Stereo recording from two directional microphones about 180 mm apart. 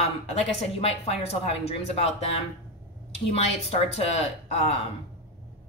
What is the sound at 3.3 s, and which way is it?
Speech, 35° left (ahead or behind).